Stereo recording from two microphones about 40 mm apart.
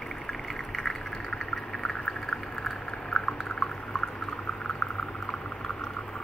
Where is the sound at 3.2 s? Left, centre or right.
Centre.